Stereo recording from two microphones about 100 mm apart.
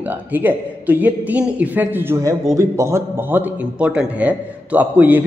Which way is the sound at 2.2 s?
30° right (ahead or behind).